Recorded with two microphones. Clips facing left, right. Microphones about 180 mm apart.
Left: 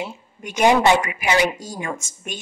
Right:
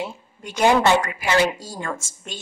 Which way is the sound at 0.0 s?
20° left (ahead or behind).